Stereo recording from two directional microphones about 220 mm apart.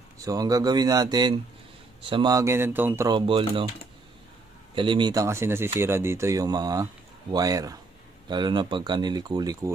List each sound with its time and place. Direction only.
0.2 s speech: 15° right (ahead or behind)
4.7 s speech: 20° right (ahead or behind)